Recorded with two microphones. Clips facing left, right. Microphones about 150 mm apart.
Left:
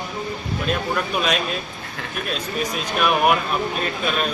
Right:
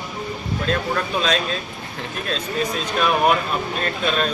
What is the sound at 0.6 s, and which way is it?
Speech, 15° left (ahead or behind).